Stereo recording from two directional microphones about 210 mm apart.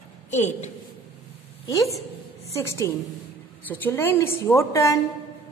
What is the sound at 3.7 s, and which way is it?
A woman's voice, 10° left (ahead or behind).